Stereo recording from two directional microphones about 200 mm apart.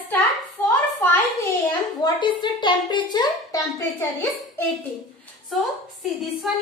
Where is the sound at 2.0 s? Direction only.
20° left (ahead or behind).